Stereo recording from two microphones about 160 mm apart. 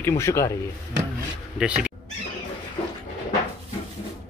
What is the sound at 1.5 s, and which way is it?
Speech, 5° right (ahead or behind).